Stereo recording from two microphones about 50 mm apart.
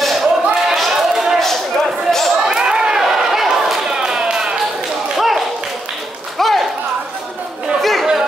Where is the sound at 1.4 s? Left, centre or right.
Centre.